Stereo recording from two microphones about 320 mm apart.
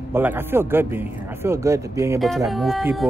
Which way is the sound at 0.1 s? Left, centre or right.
Centre.